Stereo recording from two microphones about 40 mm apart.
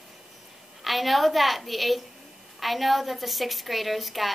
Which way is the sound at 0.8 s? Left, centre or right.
Centre.